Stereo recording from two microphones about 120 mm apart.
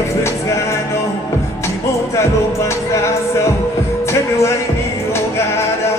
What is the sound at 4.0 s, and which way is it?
Music, 25° left (ahead or behind).